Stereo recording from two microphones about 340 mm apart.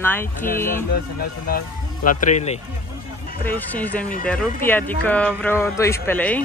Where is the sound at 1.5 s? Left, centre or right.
Left.